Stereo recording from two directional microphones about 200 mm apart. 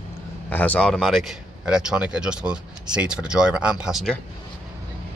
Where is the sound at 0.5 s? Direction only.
5° left (ahead or behind).